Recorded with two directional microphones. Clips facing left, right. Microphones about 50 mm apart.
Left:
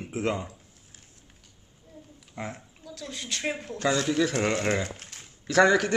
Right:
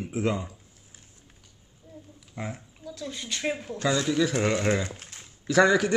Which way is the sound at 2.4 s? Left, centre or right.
Centre.